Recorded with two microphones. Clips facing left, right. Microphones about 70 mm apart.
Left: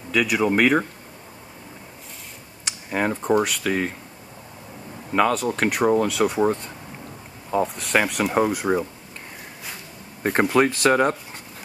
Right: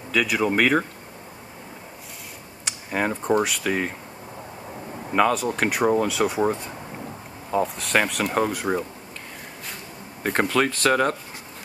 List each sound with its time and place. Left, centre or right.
0.1 s speech: centre
2.6 s speech: centre
5.1 s speech: centre
10.2 s speech: centre